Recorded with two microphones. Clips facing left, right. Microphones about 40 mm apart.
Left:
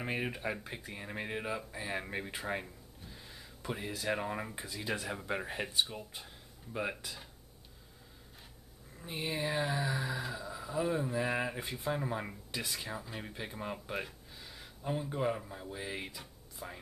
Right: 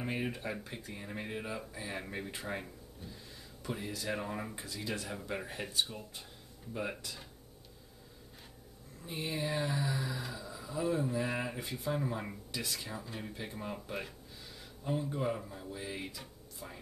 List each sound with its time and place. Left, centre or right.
0.0 s speech: centre
9.1 s speech: centre